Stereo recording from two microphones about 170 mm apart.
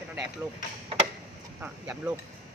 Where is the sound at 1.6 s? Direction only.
10° right (ahead or behind).